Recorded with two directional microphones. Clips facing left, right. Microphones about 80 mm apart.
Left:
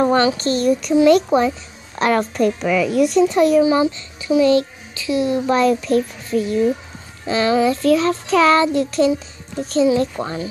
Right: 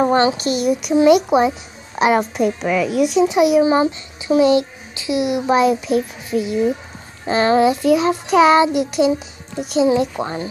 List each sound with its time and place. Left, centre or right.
0.4 s a child's voice: centre
3.6 s a child's voice: right
4.4 s a child's voice: centre
7.2 s a child's voice: right
7.6 s a child's voice: centre